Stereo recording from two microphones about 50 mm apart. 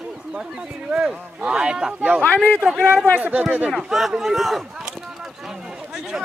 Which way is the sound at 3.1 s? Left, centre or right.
Right.